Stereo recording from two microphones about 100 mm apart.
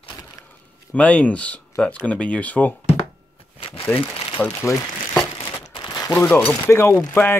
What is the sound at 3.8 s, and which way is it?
Speech, 15° left (ahead or behind).